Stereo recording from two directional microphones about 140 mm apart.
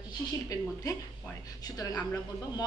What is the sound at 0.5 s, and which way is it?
A woman's voice, 25° left (ahead or behind).